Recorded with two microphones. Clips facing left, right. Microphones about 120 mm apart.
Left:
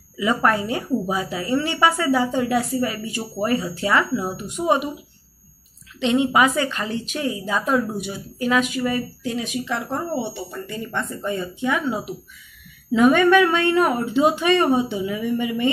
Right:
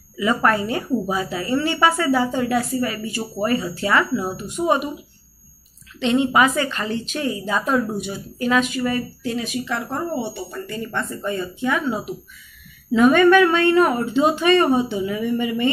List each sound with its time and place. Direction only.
0.2 s a woman's voice: 10° left (ahead or behind)
4.4 s a woman's voice: 15° left (ahead or behind)
5.9 s a woman's voice: 10° left (ahead or behind)